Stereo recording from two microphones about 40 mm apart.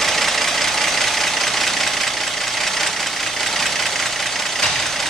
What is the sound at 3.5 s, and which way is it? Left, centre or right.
Vehicle, centre.